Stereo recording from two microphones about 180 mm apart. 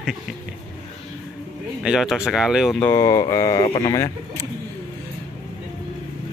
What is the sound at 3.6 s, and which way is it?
Speech, 30° left (ahead or behind).